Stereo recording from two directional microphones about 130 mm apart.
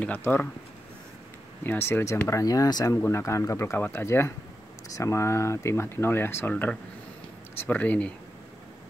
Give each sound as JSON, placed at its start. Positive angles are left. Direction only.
{"t": 0.0, "sound": "speech", "side_deg": 15}
{"t": 1.6, "sound": "speech", "side_deg": 15}